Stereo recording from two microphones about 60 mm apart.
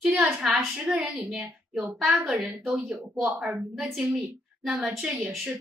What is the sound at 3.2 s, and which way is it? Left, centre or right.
A woman's voice, right.